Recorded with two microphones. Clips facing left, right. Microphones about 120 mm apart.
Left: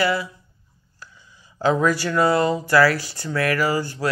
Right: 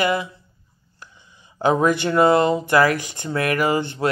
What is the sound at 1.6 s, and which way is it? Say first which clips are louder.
Speech: right 2 dB; 20° right (ahead or behind).